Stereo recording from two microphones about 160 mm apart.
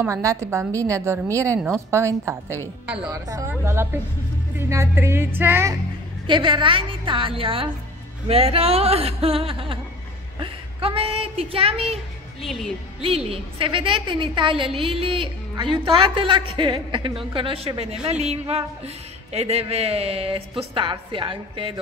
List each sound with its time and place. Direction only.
0.0 s a woman's voice: 20° right (ahead or behind)
6.2 s a woman's voice: 30° right (ahead or behind)
12.4 s speech: centre (ahead or behind)
13.3 s a woman's voice: 35° right (ahead or behind)